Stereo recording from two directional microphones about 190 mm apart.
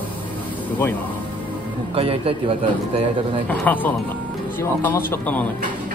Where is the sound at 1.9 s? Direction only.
30° right (ahead or behind).